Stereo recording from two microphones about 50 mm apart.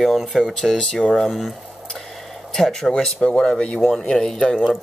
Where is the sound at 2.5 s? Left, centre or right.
Centre.